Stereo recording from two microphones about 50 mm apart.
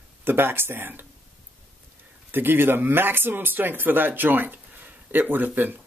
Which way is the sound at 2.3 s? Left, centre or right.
Right.